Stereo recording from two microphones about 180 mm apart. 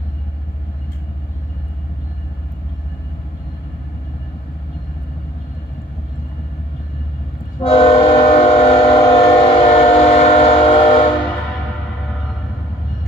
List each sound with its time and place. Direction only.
7.6 s train: 30° left (ahead or behind)